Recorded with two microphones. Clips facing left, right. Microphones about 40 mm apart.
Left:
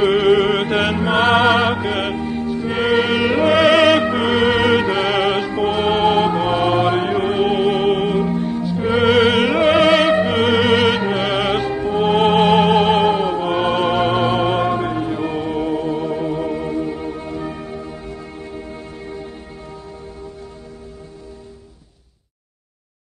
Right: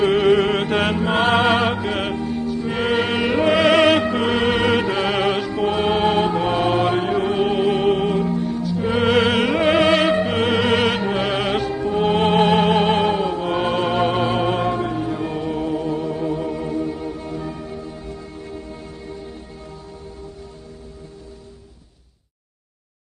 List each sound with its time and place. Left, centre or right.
0.0 s music: left
2.1 s music: left
2.7 s music: left
3.4 s music: left
6.4 s music: left
6.9 s mantra: left
7.2 s music: left
8.2 s music: left
8.9 s opera: left
11.6 s music: left
12.0 s music: left
14.7 s music: left